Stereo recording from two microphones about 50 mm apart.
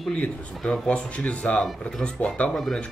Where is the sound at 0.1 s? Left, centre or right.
Left.